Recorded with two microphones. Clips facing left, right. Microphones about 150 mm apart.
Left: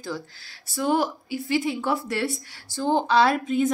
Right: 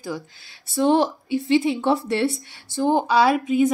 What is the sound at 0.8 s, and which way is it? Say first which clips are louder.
Speech: right 5 dB; 25° right (ahead or behind).